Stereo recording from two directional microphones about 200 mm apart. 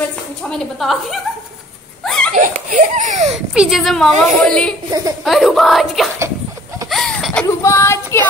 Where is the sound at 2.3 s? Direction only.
40° right (ahead or behind).